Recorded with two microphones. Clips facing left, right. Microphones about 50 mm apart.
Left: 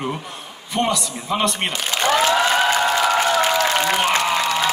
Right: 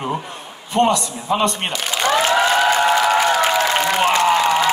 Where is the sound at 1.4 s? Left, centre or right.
Left.